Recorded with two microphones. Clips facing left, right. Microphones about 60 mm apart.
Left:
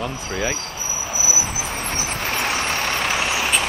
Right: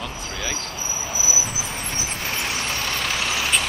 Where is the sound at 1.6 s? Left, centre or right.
Left.